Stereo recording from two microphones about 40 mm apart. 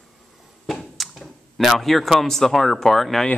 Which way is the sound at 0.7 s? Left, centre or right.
Centre.